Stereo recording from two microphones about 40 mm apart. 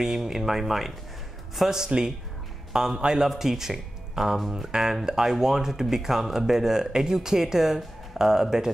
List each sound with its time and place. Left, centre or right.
0.0 s a man's voice: centre